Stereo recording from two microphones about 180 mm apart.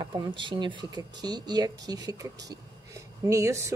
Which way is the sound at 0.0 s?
25° right (ahead or behind).